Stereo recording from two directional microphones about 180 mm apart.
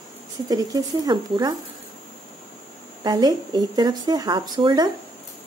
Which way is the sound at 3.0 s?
20° right (ahead or behind).